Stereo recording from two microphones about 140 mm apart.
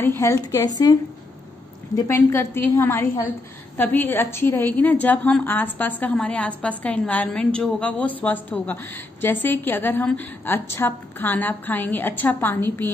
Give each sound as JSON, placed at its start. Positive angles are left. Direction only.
{"t": 0.0, "sound": "a woman's voice", "side_deg": 15}
{"t": 2.0, "sound": "a woman's voice", "side_deg": 20}